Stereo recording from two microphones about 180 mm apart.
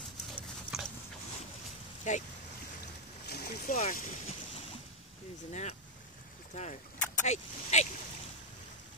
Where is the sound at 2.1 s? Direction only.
45° left (ahead or behind).